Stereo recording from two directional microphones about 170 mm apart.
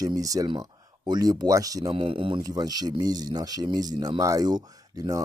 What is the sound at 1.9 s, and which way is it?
Speech, 30° right (ahead or behind).